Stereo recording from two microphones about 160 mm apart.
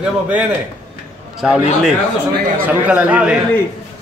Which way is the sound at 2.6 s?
10° right (ahead or behind).